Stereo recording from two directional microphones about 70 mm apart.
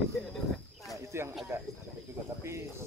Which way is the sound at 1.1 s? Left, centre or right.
Right.